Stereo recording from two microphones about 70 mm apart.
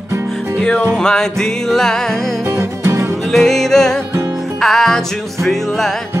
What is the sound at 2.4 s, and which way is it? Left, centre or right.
Music, right.